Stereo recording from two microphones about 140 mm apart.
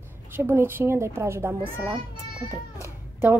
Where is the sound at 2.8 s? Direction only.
15° right (ahead or behind).